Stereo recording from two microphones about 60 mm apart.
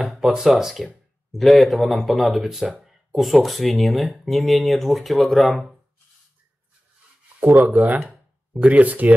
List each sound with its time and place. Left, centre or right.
0.1 s speech: centre
7.3 s speech: right